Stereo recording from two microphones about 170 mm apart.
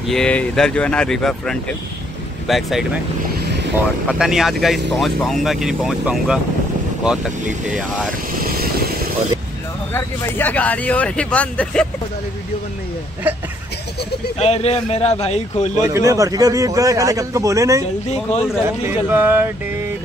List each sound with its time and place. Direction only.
0.1 s speech: 5° left (ahead or behind)
7.6 s speech: 5° right (ahead or behind)
8.4 s vehicle: 60° right (ahead or behind)
9.9 s speech: 15° left (ahead or behind)
14.4 s speech: 40° left (ahead or behind)
15.8 s a man's voice: 20° right (ahead or behind)
18.9 s speech: 10° right (ahead or behind)